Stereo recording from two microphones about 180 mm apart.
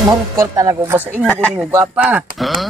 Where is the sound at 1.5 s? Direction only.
5° right (ahead or behind).